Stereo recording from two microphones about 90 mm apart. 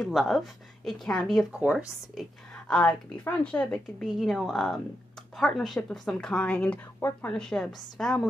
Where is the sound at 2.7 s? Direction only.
10° left (ahead or behind).